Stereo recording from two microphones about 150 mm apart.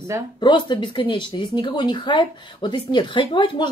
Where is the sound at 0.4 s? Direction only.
30° left (ahead or behind).